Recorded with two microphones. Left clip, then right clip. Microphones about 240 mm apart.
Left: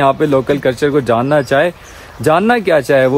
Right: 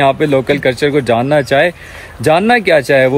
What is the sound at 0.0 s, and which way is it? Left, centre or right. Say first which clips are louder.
Speech: right 1 dB; centre.